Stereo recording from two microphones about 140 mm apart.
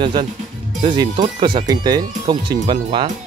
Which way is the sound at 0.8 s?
40° right (ahead or behind).